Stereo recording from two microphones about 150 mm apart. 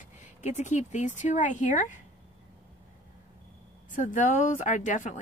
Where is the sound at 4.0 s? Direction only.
55° left (ahead or behind).